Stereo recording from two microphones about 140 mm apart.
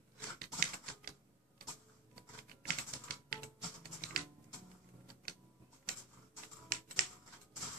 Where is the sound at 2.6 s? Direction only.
90° right.